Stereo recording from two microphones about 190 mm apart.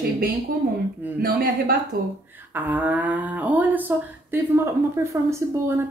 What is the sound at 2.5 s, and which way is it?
Speech, 10° right (ahead or behind).